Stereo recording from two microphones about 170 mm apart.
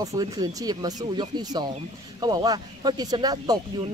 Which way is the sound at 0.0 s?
20° right (ahead or behind).